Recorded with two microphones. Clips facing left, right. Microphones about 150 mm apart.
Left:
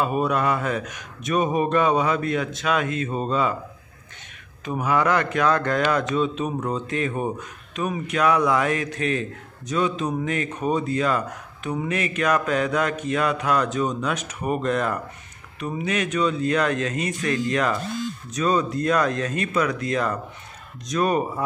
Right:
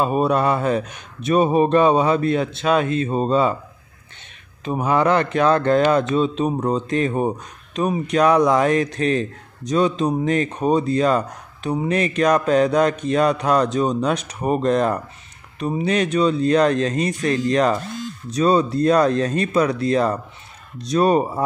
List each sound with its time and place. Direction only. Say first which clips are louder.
0.0 s speech: right 4 dB; 30° right (ahead or behind)
4.6 s speech: right 4 dB; 30° right (ahead or behind)